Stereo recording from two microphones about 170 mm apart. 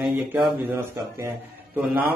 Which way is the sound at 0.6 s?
15° right (ahead or behind).